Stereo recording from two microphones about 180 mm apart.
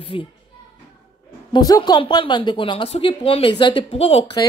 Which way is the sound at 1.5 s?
25° left (ahead or behind).